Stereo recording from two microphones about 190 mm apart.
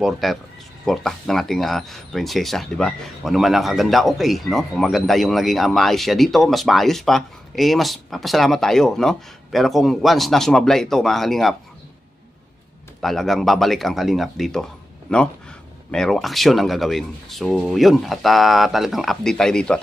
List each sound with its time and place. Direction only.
0.0 s speech: centre (ahead or behind)
13.0 s speech: centre (ahead or behind)